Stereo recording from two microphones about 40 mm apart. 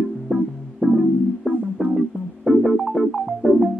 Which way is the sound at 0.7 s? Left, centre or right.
Centre.